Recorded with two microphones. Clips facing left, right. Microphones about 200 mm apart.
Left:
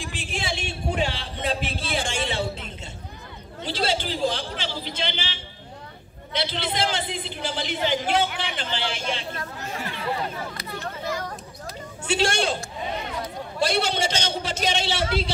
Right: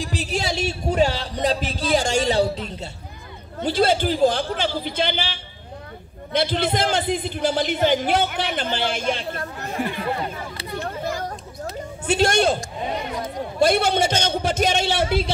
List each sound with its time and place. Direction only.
0.0 s speech: 40° right (ahead or behind)
3.6 s a man's voice: 50° right (ahead or behind)
12.1 s a man's voice: 50° right (ahead or behind)